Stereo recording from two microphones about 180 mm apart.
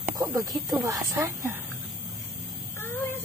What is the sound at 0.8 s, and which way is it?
Speech, 15° right (ahead or behind).